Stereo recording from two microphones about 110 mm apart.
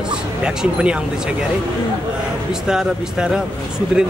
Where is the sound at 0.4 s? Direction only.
10° right (ahead or behind).